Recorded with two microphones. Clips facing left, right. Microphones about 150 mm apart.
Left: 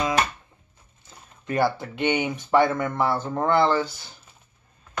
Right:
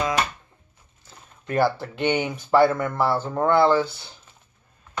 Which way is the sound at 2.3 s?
5° right (ahead or behind).